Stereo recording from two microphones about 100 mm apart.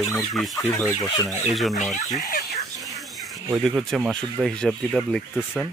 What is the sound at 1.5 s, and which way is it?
Speech, centre (ahead or behind).